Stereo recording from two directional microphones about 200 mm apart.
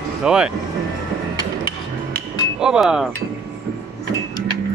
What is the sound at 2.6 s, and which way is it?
Speech, 5° right (ahead or behind).